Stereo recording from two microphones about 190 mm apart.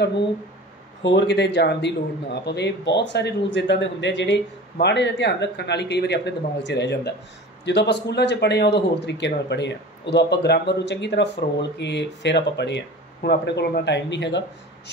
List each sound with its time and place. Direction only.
1.0 s a man's voice: 65° left (ahead or behind)